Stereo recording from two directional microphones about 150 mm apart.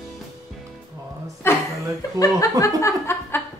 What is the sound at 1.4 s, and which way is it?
Chuckle, 15° left (ahead or behind).